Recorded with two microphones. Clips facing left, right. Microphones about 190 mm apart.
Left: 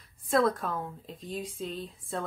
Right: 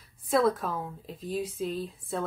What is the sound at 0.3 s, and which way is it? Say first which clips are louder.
Speech: right 1 dB; centre (ahead or behind).